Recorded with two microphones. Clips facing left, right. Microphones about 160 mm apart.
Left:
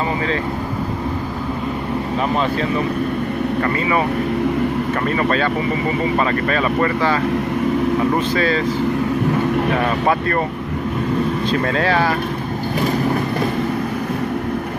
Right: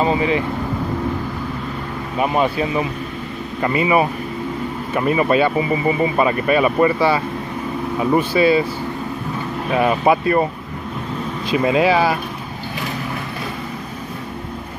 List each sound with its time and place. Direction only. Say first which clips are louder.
0.0 s speech: right 3 dB; 20° right (ahead or behind)
3.6 s speech: right 6 dB; 15° right (ahead or behind)
5.0 s speech: right 6 dB; 10° right (ahead or behind)
8.2 s speech: right 3 dB; 10° right (ahead or behind)
9.8 s speech: right 2 dB; 15° right (ahead or behind)
11.5 s speech: right 5 dB; 10° right (ahead or behind)